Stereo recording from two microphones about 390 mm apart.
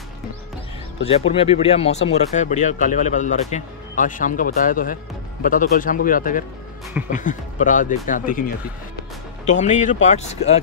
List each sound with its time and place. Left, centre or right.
1.0 s speech: centre
9.5 s speech: centre